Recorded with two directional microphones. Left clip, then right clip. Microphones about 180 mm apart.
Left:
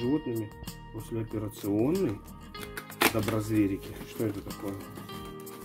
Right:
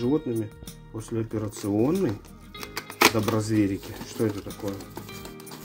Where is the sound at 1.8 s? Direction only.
10° right (ahead or behind).